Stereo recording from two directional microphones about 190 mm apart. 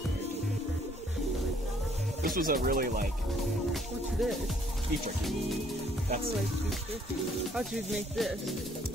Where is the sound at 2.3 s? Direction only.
50° right (ahead or behind).